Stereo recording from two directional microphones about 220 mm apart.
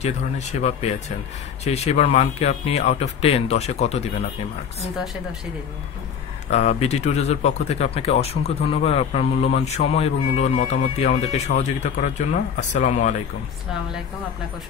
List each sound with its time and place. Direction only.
0.0 s speech: 30° left (ahead or behind)
6.5 s speech: 30° left (ahead or behind)